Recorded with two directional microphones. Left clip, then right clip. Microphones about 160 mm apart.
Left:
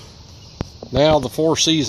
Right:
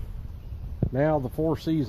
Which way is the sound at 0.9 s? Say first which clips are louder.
Left 10 dB; 25° left (ahead or behind).